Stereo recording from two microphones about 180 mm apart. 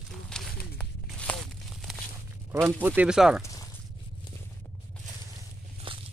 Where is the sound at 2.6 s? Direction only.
10° right (ahead or behind).